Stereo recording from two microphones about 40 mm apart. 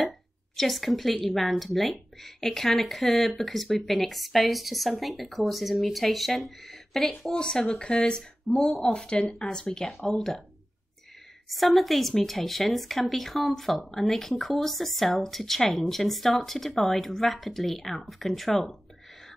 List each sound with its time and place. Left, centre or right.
0.6 s speech: centre
8.5 s speech: left
9.9 s speech: centre
11.4 s speech: centre